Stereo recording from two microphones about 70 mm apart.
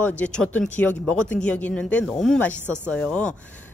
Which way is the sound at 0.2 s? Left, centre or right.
Centre.